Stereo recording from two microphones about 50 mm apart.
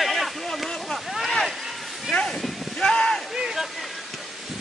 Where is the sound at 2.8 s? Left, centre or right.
Centre.